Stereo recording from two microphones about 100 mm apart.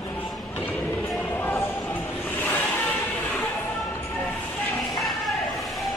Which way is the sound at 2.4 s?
15° left (ahead or behind).